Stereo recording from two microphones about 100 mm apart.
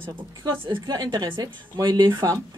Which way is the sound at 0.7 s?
45° right (ahead or behind).